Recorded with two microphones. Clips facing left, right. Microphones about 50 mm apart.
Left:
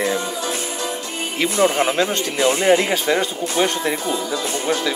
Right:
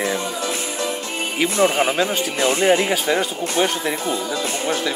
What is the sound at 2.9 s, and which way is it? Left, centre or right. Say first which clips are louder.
Speech: left 1 dB; centre.